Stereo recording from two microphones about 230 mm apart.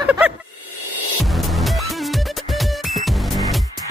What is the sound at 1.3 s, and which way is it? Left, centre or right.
Music, centre.